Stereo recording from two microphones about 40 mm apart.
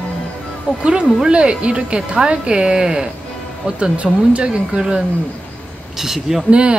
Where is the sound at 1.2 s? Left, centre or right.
Right.